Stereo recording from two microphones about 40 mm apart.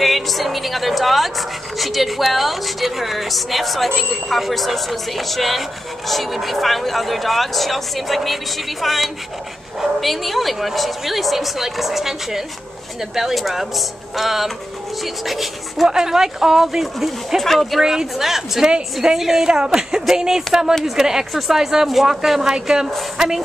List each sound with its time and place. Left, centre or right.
0.0 s a woman's voice: centre
15.9 s speech: centre